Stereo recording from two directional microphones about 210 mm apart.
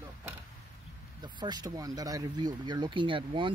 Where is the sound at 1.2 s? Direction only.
20° right (ahead or behind).